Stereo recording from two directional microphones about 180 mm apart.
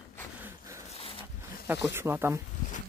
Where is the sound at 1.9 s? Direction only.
15° right (ahead or behind).